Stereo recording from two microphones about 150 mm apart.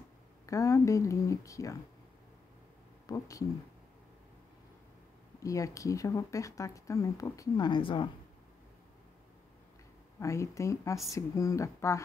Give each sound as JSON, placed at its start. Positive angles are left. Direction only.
{"t": 0.5, "sound": "speech", "side_deg": 20}
{"t": 3.1, "sound": "speech", "side_deg": 20}
{"t": 5.4, "sound": "speech", "side_deg": 20}
{"t": 10.2, "sound": "speech", "side_deg": 20}